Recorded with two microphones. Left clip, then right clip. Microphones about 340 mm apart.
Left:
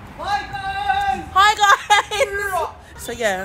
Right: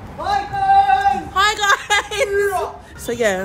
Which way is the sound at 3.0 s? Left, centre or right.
Centre.